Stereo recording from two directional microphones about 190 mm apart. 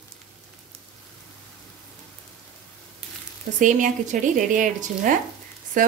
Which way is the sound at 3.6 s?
40° right (ahead or behind).